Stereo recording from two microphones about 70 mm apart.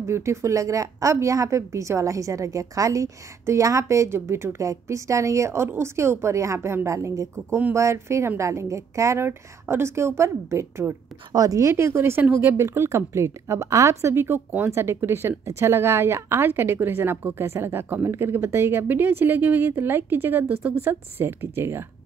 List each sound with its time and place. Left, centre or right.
0.0 s a woman's voice: right
11.3 s a woman's voice: right